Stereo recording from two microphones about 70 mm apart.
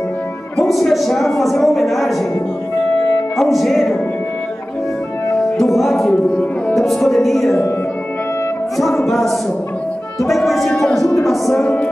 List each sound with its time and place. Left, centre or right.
0.6 s music: centre
3.3 s music: centre
5.6 s music: centre
8.7 s music: centre
11.1 s speech: centre
11.6 s music: centre